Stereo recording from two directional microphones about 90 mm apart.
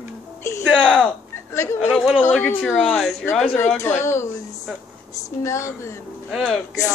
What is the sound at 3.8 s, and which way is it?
Speech, 30° left (ahead or behind).